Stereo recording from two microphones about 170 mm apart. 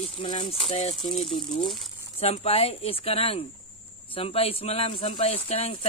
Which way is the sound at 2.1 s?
35° left (ahead or behind).